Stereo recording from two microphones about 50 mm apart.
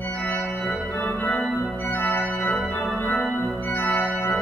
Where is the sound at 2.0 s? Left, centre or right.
Left.